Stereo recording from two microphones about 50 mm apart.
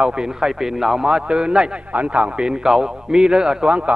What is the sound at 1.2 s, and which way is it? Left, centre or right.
Speech, centre.